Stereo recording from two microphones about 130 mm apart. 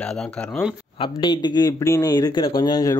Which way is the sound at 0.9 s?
35° left (ahead or behind).